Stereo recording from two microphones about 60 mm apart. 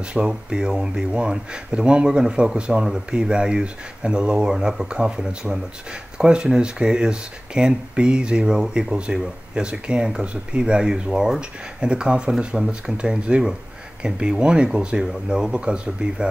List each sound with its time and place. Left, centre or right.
0.0 s speech: centre